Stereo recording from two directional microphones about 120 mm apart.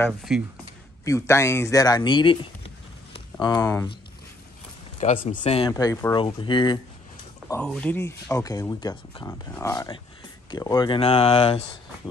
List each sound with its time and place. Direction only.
0.3 s speech: 5° right (ahead or behind)
1.0 s speech: 25° left (ahead or behind)
3.3 s speech: 40° left (ahead or behind)
5.2 s speech: 80° left; by 5.7 s 65° left (ahead or behind)
5.7 s speech: 30° left (ahead or behind)
6.1 s speech: 40° left (ahead or behind)
7.6 s speech: 10° left (ahead or behind)
8.3 s speech: 30° left (ahead or behind)
9.3 s speech: 25° left (ahead or behind)
11.0 s speech: 60° left (ahead or behind)